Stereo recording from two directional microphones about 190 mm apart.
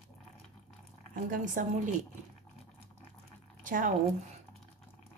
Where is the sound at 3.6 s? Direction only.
45° right (ahead or behind).